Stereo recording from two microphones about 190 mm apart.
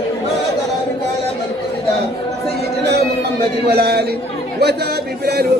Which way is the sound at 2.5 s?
60° right (ahead or behind).